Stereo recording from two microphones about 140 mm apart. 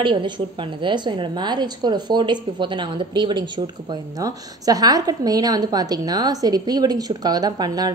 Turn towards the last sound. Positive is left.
turn(degrees=-30)  # may be behind; listen again after turning